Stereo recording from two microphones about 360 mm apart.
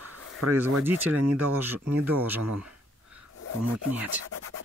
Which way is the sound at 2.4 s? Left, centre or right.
Right.